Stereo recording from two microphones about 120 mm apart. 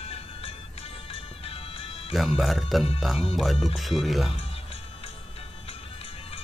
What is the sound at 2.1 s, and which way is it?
Speech, centre (ahead or behind).